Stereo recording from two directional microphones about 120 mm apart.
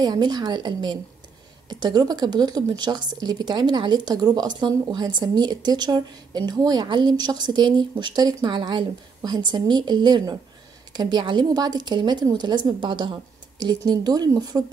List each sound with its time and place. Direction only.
0.0 s a woman's voice: 35° right (ahead or behind)